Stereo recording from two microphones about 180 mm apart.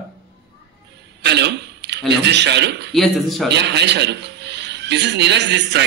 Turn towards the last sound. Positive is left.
turn(degrees=-75)  # may be behind; listen again after turning